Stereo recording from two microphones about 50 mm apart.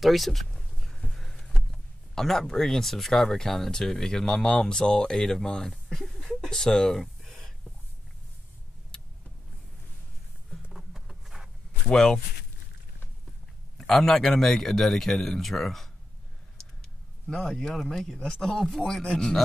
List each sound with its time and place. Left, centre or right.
0.0 s speech: centre
6.0 s a sound: centre
8.9 s vehicle: centre
10.7 s a sound: centre
11.9 s a man's voice: centre
13.7 s a man's voice: centre
17.4 s a man's voice: centre